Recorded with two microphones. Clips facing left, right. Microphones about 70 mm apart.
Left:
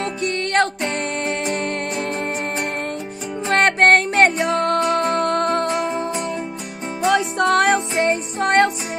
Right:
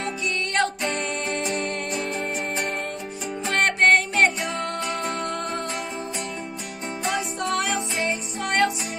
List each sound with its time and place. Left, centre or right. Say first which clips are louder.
0.2 s music: left 5 dB; left
3.4 s music: left 5 dB; left
8.0 s music: left 8 dB; left